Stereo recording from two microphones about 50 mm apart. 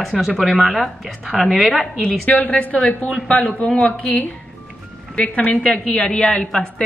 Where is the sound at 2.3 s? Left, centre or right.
Left.